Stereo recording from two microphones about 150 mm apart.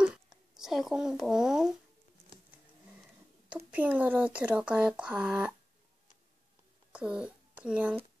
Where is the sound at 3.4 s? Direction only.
10° right (ahead or behind).